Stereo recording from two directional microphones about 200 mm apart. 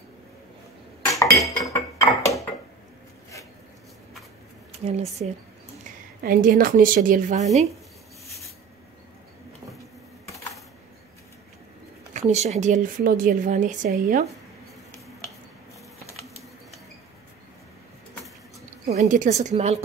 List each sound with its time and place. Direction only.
1.0 s cutlery: 15° left (ahead or behind)
1.6 s a sound: 15° left (ahead or behind)
4.7 s a woman's voice: 35° right (ahead or behind)
6.2 s a woman's voice: 45° right (ahead or behind)
12.1 s a woman's voice: 35° right (ahead or behind)
18.9 s a woman's voice: 40° right (ahead or behind)